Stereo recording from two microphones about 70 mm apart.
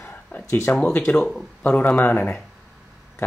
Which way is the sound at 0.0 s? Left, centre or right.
Left.